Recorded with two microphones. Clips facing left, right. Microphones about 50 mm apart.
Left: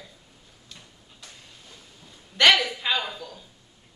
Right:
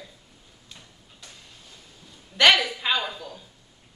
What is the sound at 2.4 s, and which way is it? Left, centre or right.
A woman's voice, centre.